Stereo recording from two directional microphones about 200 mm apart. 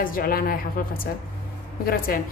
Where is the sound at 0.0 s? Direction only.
45° left (ahead or behind).